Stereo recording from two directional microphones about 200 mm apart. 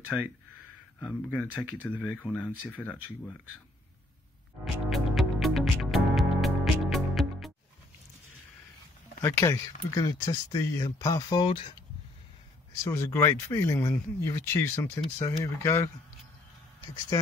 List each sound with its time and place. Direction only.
0.9 s speech: 5° left (ahead or behind)
4.8 s music: centre (ahead or behind)
9.2 s speech: 15° left (ahead or behind)
12.8 s speech: 15° left (ahead or behind)